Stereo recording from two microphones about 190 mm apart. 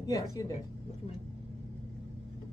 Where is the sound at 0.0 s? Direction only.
20° left (ahead or behind).